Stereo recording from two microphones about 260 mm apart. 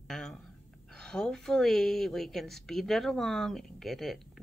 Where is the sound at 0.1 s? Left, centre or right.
Centre.